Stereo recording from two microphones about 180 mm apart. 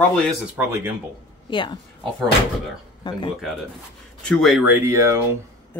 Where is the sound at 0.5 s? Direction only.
15° right (ahead or behind).